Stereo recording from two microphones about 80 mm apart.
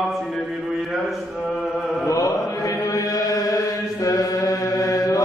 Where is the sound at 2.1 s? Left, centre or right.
Left.